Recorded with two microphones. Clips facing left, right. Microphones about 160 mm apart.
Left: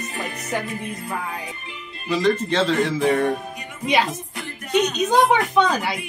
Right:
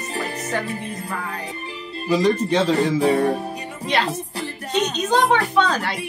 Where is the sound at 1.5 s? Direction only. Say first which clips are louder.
Right 5 dB; 35° right (ahead or behind).